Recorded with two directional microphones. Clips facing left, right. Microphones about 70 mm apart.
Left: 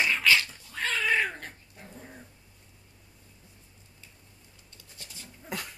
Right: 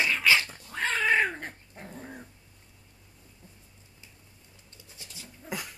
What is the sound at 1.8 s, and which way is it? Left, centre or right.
Dog, right.